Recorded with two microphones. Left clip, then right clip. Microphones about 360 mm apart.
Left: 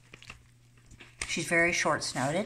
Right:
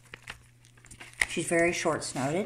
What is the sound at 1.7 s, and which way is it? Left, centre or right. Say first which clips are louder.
Speech: left 1 dB; left.